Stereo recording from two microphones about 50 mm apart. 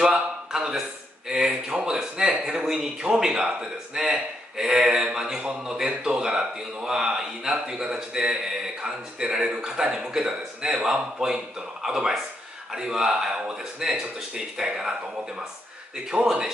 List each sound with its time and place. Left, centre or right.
0.0 s a man's voice: centre
16.3 s a man's voice: centre